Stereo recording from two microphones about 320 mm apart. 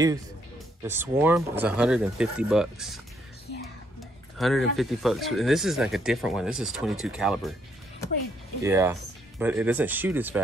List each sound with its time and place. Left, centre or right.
0.8 s speech: centre
4.4 s speech: centre
8.6 s speech: centre